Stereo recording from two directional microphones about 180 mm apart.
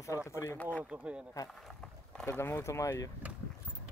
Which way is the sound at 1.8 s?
5° left (ahead or behind).